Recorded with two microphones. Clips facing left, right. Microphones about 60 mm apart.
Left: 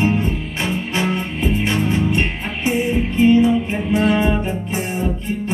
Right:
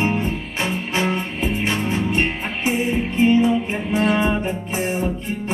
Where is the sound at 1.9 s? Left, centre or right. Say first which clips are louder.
Left 2 dB; right.